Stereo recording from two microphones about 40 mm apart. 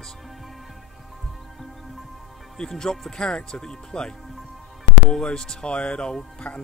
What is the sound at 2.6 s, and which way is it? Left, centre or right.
Speech, centre.